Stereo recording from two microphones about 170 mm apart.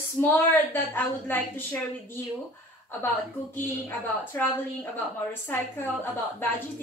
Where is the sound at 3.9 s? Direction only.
10° left (ahead or behind).